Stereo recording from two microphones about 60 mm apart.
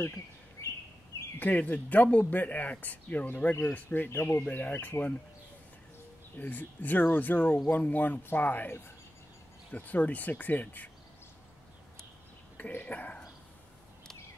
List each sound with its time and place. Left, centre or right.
0.0 s bird: left
1.4 s speech: left
4.5 s speech: left
6.3 s speech: left
12.5 s speech: left